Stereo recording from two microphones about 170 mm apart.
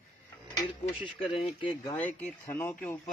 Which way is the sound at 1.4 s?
30° left (ahead or behind).